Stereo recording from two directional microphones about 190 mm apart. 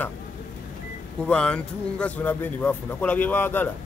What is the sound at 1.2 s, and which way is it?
A man's voice, 5° left (ahead or behind).